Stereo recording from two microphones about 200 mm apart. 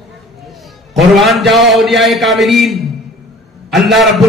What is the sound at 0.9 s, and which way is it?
A man's voice, centre (ahead or behind).